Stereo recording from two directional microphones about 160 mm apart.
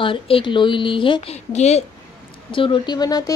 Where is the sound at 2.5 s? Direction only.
30° left (ahead or behind).